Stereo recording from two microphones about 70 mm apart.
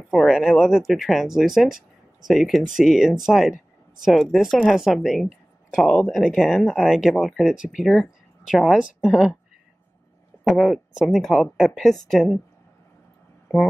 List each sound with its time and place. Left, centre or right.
0.3 s speech: centre
5.9 s speech: centre
6.3 s speech: centre
7.5 s speech: centre
7.9 s speech: centre
10.4 s speech: centre